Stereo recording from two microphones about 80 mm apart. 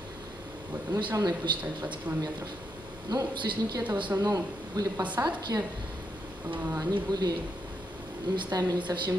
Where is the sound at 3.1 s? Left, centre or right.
Right.